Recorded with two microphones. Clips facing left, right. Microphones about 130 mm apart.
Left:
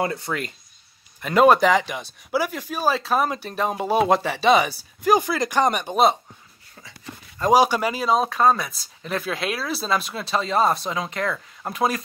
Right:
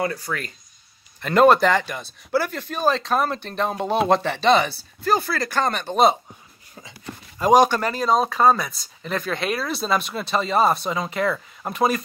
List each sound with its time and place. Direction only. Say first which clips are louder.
0.0 s speech: left 1 dB; 25° left (ahead or behind)
1.2 s speech: even; 5° left (ahead or behind)
6.8 s a sound: right 3 dB; 20° right (ahead or behind)
7.5 s speech: right 1 dB; 10° left (ahead or behind)